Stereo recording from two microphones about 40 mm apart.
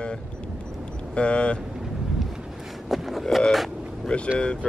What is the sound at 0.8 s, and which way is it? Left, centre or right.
Vehicle, left.